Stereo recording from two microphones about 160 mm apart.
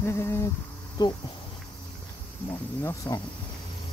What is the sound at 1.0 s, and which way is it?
Speech, 25° left (ahead or behind).